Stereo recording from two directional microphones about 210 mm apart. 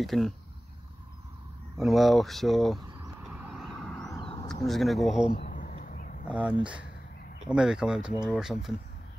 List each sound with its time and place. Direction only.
0.0 s speech: centre (ahead or behind)
1.8 s speech: centre (ahead or behind)
2.9 s vehicle: 15° right (ahead or behind); by 4.1 s centre (ahead or behind)
4.1 s a sound: 20° left (ahead or behind)
4.6 s speech: centre (ahead or behind)
5.4 s a sound: 40° left (ahead or behind)
6.2 s speech: 5° right (ahead or behind)